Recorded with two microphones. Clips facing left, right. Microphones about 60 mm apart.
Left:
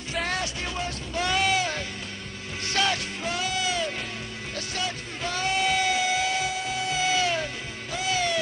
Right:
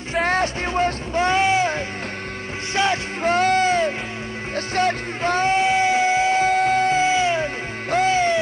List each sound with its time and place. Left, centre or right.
0.1 s music: right
1.1 s a sound: right
2.7 s music: right
3.2 s music: right
6.5 s music: right
7.0 s music: right